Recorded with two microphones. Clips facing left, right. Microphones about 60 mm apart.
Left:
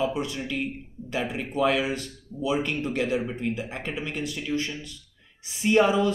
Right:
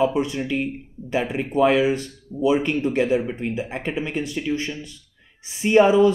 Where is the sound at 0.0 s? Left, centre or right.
Right.